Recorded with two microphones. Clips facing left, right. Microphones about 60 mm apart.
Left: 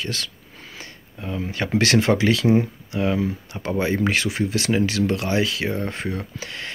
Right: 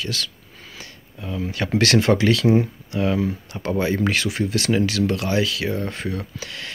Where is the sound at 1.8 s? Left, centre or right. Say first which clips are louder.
Right 1 dB; centre.